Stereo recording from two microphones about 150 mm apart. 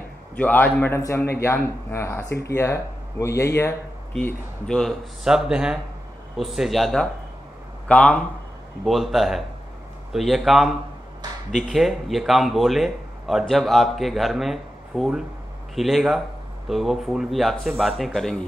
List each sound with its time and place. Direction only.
0.4 s speech: 10° left (ahead or behind)
4.1 s speech: 5° left (ahead or behind)